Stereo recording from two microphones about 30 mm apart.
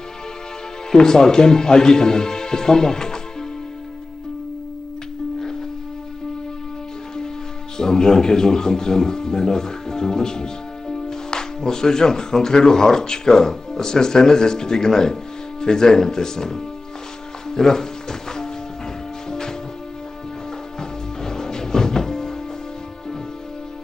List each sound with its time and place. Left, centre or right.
0.9 s speech: left
7.7 s speech: left
21.2 s music: centre